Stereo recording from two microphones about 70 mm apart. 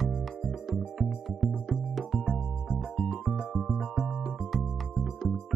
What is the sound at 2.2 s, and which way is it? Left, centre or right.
Music, centre.